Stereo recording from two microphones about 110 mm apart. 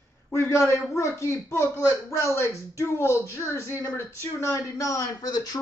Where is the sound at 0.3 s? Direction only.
25° left (ahead or behind).